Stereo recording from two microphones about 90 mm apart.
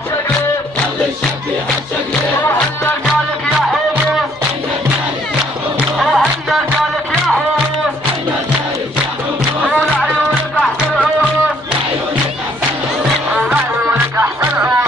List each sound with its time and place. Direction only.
5.9 s music: centre (ahead or behind)
9.7 s music: 15° left (ahead or behind)
13.3 s music: 15° right (ahead or behind)
13.8 s music: 30° right (ahead or behind)
14.4 s music: 15° right (ahead or behind)